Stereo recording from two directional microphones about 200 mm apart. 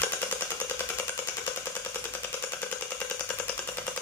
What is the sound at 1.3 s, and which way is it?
Jackhammer, 10° left (ahead or behind).